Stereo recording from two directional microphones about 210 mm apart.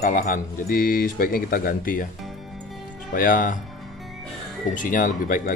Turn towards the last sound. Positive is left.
turn(degrees=40)  # may be behind; listen again after turning